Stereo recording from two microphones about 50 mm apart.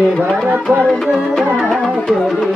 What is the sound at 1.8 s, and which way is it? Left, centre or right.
Music, centre.